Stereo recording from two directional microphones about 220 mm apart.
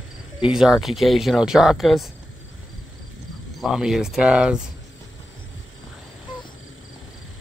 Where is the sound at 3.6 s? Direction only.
Centre (ahead or behind).